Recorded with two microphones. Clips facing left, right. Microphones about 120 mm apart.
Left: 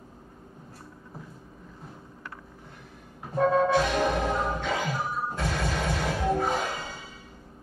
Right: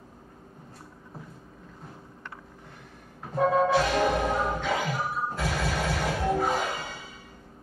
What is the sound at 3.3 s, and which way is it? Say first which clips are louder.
Music: even; 5° right (ahead or behind).